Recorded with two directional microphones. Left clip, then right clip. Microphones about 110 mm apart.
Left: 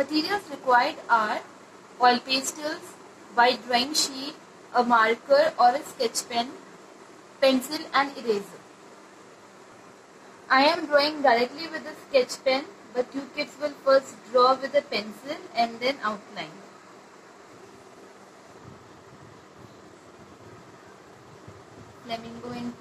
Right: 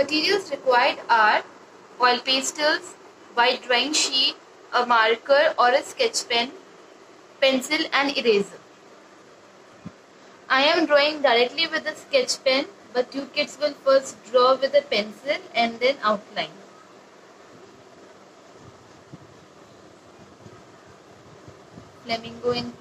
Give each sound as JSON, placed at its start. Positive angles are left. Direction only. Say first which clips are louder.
{"t": 0.5, "sound": "a woman's voice", "louder": "even", "side_deg": -35}
{"t": 10.5, "sound": "a woman's voice", "louder": "right 2 dB", "side_deg": -30}
{"t": 22.0, "sound": "a woman's voice", "louder": "right 9 dB", "side_deg": -30}